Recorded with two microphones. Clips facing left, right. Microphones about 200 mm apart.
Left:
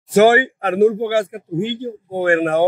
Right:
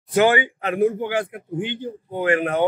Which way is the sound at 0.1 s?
45° left (ahead or behind).